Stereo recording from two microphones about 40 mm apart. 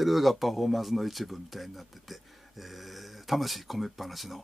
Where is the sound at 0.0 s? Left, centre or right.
Centre.